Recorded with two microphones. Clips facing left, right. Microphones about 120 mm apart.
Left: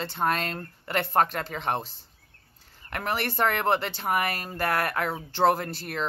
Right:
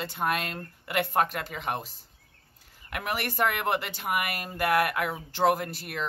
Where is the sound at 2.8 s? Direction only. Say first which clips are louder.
Left 2 dB; 35° left (ahead or behind).